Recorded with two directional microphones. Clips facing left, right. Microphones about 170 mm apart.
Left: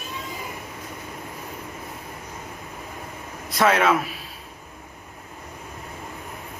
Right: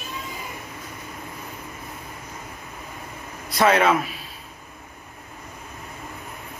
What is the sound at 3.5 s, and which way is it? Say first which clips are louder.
Speech: right 1 dB; centre (ahead or behind).